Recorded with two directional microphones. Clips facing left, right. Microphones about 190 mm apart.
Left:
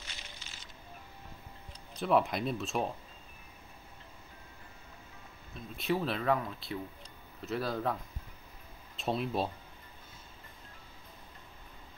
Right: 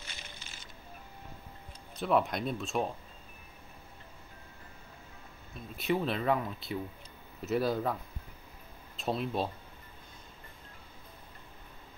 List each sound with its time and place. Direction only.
0.0 s a sound: 55° right (ahead or behind)
2.0 s speech: centre (ahead or behind)
5.8 s speech: centre (ahead or behind)